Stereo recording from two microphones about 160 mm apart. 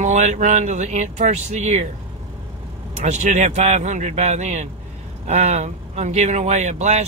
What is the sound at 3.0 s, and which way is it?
Speech, 45° right (ahead or behind).